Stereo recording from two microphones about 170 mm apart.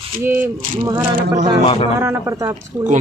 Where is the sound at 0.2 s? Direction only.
10° right (ahead or behind).